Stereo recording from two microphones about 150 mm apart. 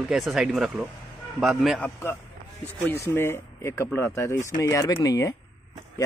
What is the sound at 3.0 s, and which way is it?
Speech, 15° left (ahead or behind).